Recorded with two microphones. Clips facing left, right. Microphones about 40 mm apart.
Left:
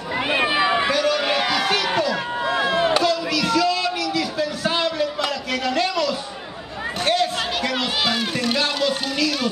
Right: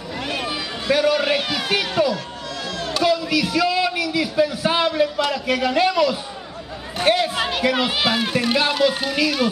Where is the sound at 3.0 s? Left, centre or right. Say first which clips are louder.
Right 1 dB; centre.